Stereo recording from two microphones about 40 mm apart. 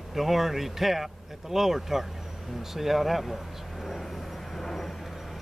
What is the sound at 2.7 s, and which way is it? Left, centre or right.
Vehicle, centre.